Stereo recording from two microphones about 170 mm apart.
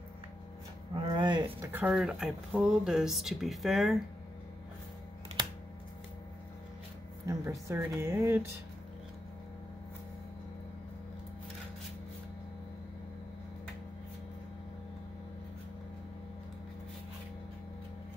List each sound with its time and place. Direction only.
0.9 s a sound: 25° right (ahead or behind)
1.6 s speech: 10° right (ahead or behind)
7.2 s a woman's voice: 20° right (ahead or behind)